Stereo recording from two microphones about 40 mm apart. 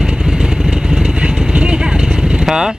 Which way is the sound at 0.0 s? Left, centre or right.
Centre.